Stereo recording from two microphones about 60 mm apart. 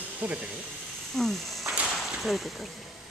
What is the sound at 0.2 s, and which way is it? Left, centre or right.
Speech, centre.